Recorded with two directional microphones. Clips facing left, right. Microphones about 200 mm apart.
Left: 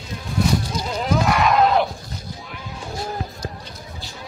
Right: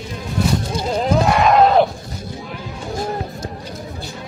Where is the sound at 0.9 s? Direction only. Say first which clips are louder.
Right 4 dB; 30° right (ahead or behind).